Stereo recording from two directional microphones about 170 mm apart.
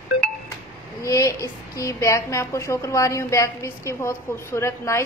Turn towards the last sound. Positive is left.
turn(degrees=15)  # may be behind; listen again after turning